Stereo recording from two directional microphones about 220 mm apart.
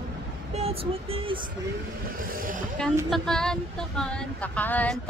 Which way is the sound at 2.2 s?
40° right (ahead or behind).